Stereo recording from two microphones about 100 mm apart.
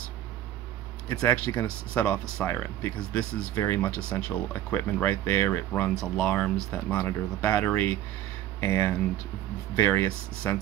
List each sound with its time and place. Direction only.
1.2 s speech: 15° left (ahead or behind)
3.5 s speech: 25° left (ahead or behind)
4.1 s speech: 15° left (ahead or behind)
5.9 s speech: 5° left (ahead or behind)